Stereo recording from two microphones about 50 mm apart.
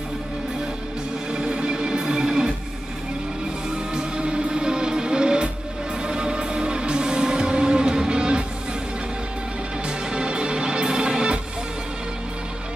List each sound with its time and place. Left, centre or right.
1.3 s music: centre
3.7 s music: centre
9.8 s music: centre